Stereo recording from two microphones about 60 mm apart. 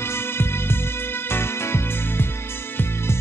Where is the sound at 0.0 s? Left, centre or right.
Left.